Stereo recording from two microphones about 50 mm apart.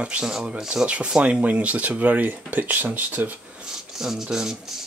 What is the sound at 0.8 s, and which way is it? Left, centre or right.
Speech, right.